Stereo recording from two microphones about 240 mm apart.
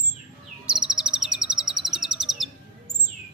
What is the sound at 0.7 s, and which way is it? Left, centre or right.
Chirp, centre.